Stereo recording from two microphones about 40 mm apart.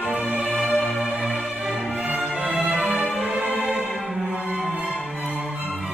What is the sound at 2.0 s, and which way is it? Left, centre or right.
Music, right.